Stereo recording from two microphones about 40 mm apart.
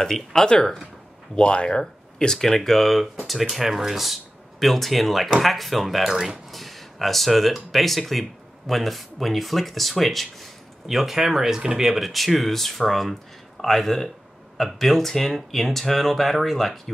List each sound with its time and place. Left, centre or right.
0.0 s speech: centre
1.3 s speech: left
1.8 s speech: centre
6.1 s speech: centre
6.5 s speech: centre